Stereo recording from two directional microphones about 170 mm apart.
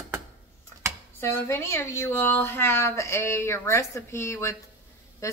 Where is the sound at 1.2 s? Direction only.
15° left (ahead or behind).